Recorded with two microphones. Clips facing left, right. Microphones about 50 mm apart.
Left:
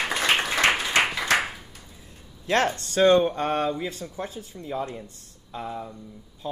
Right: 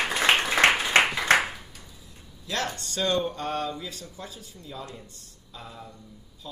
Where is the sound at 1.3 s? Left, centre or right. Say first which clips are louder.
Right 1 dB; centre.